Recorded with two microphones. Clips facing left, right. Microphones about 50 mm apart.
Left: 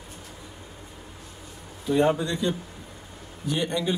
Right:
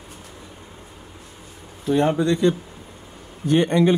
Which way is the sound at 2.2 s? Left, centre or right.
Right.